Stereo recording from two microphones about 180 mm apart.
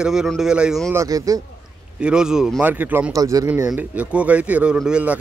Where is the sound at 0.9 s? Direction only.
20° right (ahead or behind).